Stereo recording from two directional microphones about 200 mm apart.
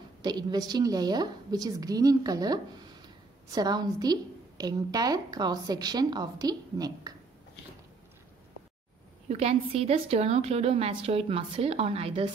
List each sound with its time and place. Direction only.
0.2 s a woman's voice: 20° right (ahead or behind)
9.3 s a woman's voice: 30° right (ahead or behind)